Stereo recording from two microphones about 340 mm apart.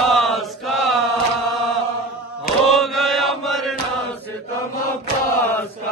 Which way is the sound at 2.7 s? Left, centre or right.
Centre.